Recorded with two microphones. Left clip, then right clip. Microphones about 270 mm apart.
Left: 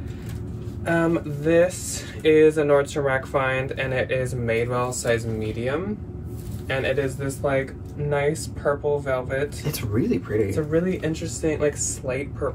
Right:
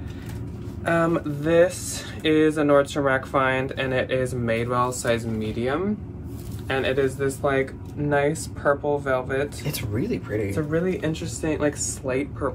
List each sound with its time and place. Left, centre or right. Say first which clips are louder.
0.8 s speech: even; right
9.7 s speech: left 3 dB; centre
10.5 s speech: left 1 dB; centre